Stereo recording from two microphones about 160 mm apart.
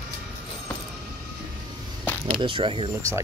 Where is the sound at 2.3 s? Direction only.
35° right (ahead or behind).